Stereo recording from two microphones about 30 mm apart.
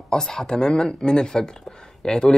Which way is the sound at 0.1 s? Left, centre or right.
Centre.